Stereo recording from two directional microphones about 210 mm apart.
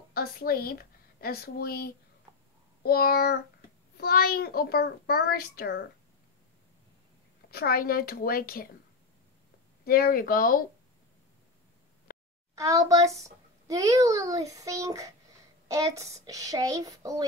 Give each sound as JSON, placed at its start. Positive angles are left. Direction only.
{"t": 0.1, "sound": "a woman's voice", "side_deg": 45}
{"t": 7.5, "sound": "a child's voice", "side_deg": 45}
{"t": 9.8, "sound": "a child's voice", "side_deg": 45}
{"t": 12.1, "sound": "a sound", "side_deg": 40}
{"t": 12.5, "sound": "a child's voice", "side_deg": -15}